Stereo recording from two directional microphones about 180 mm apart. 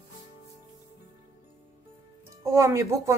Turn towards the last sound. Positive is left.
turn(degrees=-15)  # may be behind; listen again after turning